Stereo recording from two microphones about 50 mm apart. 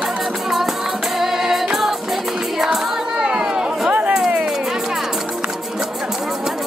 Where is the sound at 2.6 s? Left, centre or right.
Centre.